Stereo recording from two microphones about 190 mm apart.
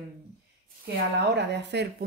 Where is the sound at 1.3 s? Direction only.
60° right (ahead or behind).